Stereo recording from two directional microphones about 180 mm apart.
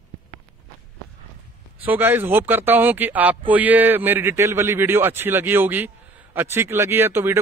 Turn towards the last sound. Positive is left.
turn(degrees=-15)  # may be behind; listen again after turning